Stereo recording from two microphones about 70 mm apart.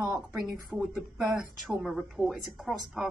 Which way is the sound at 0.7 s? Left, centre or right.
Right.